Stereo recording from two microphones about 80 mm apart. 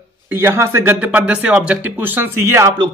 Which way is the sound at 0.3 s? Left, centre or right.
Right.